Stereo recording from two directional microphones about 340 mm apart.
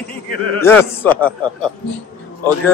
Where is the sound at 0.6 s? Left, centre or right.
Centre.